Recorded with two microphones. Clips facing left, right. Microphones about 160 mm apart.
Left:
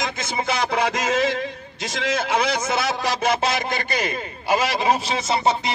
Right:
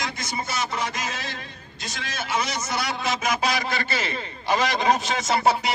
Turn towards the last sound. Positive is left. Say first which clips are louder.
# left 1 dB
turn(degrees=0)  # may be behind; listen again after turning